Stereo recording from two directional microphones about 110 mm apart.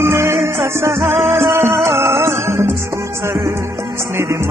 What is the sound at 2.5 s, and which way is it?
Music, 85° right.